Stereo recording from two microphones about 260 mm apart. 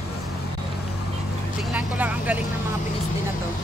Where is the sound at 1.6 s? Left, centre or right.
Centre.